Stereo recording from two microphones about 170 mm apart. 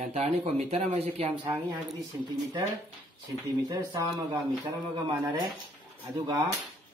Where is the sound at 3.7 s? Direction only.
25° right (ahead or behind).